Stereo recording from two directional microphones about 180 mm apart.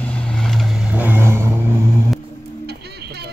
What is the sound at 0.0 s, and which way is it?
Vehicle, 5° left (ahead or behind).